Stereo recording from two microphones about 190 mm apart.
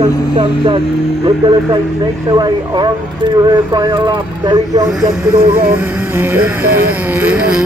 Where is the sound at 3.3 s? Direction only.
20° right (ahead or behind).